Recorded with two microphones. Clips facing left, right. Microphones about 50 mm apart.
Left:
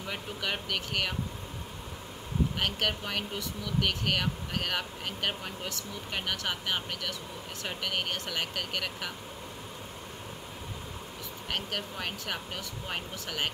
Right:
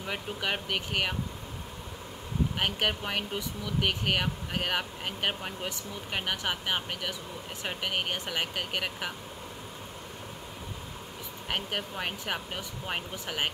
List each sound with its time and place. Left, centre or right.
0.0 s speech: centre
2.6 s speech: centre
11.5 s speech: centre